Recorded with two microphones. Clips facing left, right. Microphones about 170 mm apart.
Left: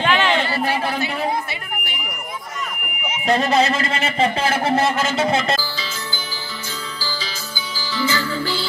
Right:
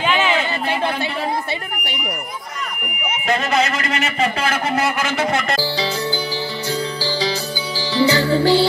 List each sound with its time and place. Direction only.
0.0 s chatter: 5° right (ahead or behind)
3.3 s a man's voice: 35° left (ahead or behind)
5.6 s music: 70° right (ahead or behind)